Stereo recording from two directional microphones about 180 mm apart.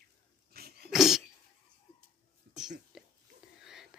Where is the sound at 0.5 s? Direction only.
60° right (ahead or behind).